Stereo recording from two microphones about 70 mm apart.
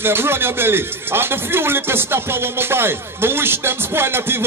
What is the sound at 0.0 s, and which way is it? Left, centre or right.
Speech, right.